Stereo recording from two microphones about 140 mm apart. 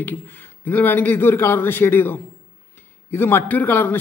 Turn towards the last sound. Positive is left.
turn(degrees=15)  # may be behind; listen again after turning